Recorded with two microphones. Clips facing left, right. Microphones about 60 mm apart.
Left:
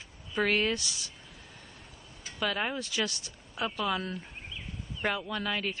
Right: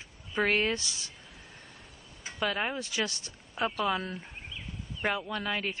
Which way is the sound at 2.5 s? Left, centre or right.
Centre.